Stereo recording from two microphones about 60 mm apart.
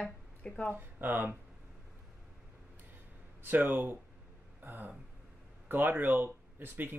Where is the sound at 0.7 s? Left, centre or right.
Right.